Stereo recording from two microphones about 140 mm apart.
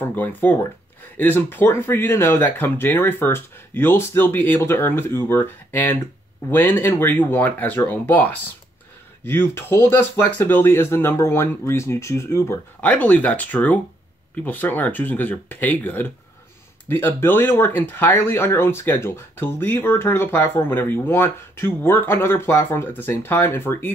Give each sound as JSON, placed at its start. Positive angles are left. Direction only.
{"t": 0.0, "sound": "speech", "side_deg": 15}